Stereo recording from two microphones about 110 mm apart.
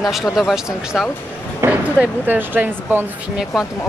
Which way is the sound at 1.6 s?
15° right (ahead or behind).